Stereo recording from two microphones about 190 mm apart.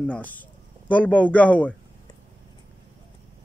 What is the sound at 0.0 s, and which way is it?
Speech, 10° left (ahead or behind).